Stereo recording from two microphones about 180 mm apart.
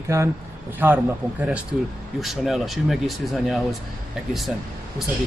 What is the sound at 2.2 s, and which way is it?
Speech, centre (ahead or behind).